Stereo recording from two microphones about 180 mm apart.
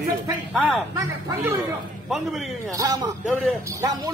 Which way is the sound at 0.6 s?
Centre (ahead or behind).